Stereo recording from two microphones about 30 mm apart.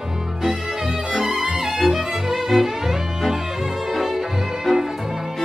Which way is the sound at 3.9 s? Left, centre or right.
Centre.